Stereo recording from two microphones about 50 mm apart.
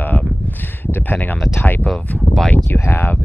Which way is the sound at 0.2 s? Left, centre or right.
Right.